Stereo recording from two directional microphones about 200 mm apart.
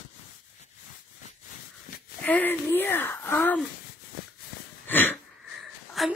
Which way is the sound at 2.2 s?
10° left (ahead or behind).